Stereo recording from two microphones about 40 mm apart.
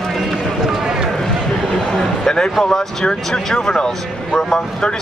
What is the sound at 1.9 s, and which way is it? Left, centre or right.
Speech, centre.